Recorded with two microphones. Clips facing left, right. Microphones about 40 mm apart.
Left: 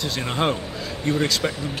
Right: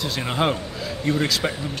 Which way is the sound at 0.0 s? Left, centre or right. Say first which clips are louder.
Right 1 dB; centre.